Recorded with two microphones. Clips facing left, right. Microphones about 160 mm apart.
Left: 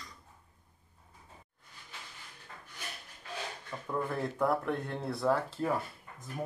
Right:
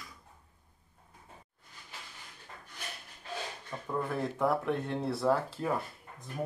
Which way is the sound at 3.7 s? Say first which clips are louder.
Right 2 dB; centre (ahead or behind).